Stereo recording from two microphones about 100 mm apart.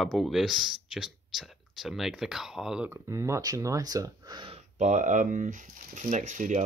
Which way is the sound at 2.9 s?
30° right (ahead or behind).